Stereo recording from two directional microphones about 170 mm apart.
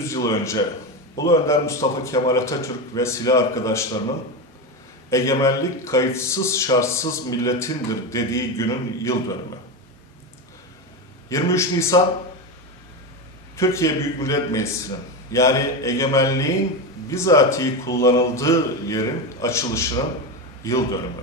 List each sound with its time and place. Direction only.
0.0 s a man's voice: 15° left (ahead or behind)
5.1 s a man's voice: 20° left (ahead or behind)
11.2 s a man's voice: 15° left (ahead or behind)
13.6 s a man's voice: 15° left (ahead or behind)